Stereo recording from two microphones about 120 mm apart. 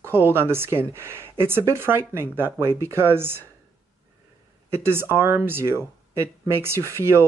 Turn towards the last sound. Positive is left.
turn(degrees=-20)  # may be behind; listen again after turning